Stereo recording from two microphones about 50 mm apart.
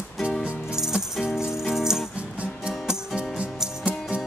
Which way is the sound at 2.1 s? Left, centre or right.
Right.